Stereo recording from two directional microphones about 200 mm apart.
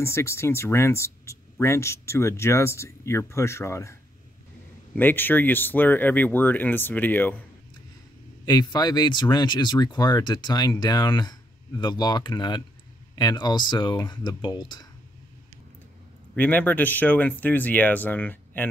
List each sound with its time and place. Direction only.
0.0 s speech: 15° left (ahead or behind)
4.9 s speech: 10° left (ahead or behind)
8.5 s speech: 20° left (ahead or behind)
16.3 s speech: 10° left (ahead or behind)